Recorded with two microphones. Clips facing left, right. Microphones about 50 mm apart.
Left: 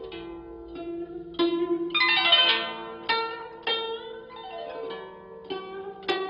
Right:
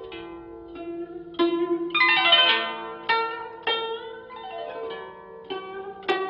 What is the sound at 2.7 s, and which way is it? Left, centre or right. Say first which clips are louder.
Zither: right 3 dB; centre.